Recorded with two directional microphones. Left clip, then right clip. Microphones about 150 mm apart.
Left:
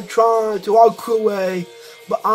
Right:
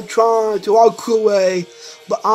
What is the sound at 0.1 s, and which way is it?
Speech, 25° right (ahead or behind).